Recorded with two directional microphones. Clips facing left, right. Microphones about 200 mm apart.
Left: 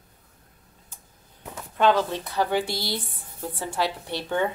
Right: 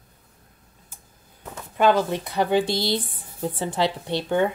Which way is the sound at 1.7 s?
10° right (ahead or behind).